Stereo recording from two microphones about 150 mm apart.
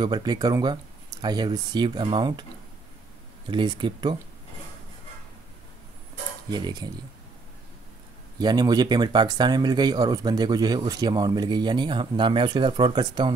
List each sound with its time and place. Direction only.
0.0 s speech: 30° right (ahead or behind)
3.4 s speech: 30° right (ahead or behind)
6.5 s speech: 30° right (ahead or behind)
8.4 s speech: 30° right (ahead or behind)